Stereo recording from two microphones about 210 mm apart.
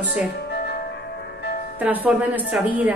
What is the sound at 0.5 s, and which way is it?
Music, 50° left (ahead or behind).